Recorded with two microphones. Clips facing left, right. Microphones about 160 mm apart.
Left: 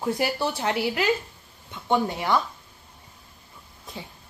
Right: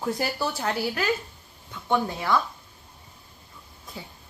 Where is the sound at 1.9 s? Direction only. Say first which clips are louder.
Left 1 dB; 20° left (ahead or behind).